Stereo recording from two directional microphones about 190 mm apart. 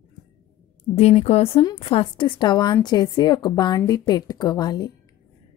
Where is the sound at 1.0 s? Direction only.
35° left (ahead or behind).